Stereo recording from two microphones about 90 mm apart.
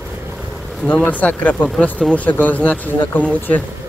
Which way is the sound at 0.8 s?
20° left (ahead or behind).